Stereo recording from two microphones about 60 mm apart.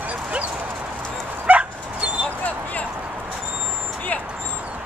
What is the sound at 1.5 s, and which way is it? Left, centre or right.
Dog, centre.